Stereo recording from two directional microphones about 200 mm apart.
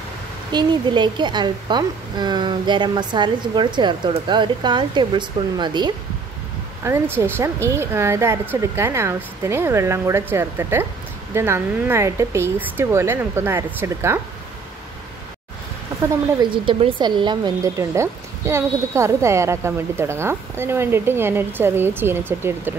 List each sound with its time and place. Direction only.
0.5 s a woman's voice: 20° right (ahead or behind)
16.3 s a woman's voice: 25° right (ahead or behind)